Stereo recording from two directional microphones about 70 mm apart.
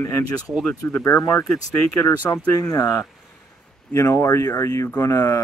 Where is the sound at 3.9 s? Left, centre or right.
Left.